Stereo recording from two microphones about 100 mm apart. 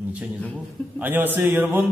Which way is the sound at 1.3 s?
20° right (ahead or behind).